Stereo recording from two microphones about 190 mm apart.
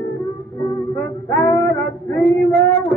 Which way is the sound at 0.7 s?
15° left (ahead or behind).